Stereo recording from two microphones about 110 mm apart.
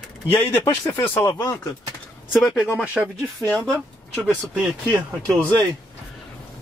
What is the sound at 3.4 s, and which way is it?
Speech, 30° right (ahead or behind).